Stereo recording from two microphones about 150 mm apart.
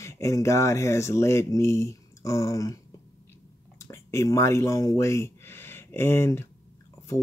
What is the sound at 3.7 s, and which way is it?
Speech, 20° left (ahead or behind).